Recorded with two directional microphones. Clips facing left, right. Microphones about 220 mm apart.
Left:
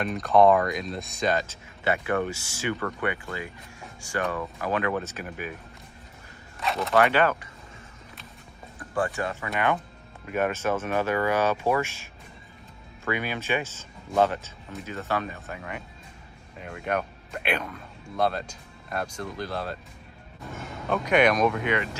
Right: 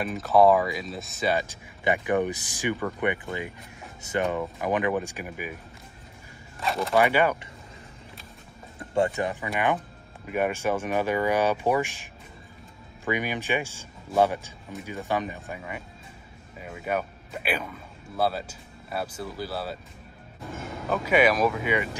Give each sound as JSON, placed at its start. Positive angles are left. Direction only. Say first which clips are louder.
{"t": 0.0, "sound": "speech", "louder": "even", "side_deg": -5}
{"t": 6.6, "sound": "speech", "louder": "right 1 dB", "side_deg": 0}
{"t": 6.9, "sound": "speech", "louder": "even", "side_deg": -10}
{"t": 8.9, "sound": "speech", "louder": "right 3 dB", "side_deg": -20}
{"t": 20.8, "sound": "speech", "louder": "even", "side_deg": -5}